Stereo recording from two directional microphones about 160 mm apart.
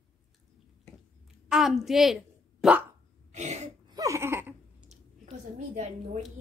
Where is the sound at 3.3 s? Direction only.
45° right (ahead or behind).